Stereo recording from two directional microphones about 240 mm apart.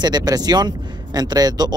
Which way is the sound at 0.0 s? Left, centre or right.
Centre.